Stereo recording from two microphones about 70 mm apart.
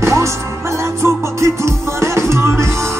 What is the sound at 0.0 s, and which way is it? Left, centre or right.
Music, right.